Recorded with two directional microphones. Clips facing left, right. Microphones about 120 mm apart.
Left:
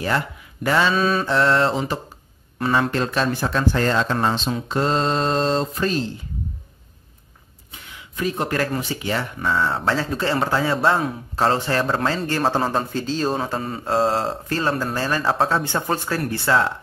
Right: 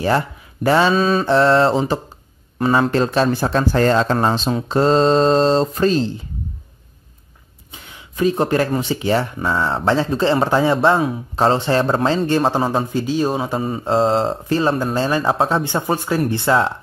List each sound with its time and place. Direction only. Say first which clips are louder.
0.7 s a man's voice: right 4 dB; 30° right (ahead or behind)
7.7 s a man's voice: right 1 dB; 30° right (ahead or behind)